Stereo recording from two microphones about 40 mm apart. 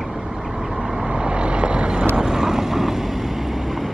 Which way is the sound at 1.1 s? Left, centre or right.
Right.